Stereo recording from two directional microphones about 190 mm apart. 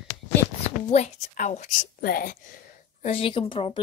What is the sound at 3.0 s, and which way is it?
Speech, 30° left (ahead or behind).